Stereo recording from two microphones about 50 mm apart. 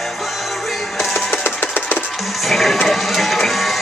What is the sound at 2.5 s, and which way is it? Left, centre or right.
Music, centre.